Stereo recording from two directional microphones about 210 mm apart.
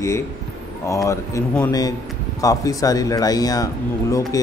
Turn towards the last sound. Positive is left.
turn(degrees=15)  # may be behind; listen again after turning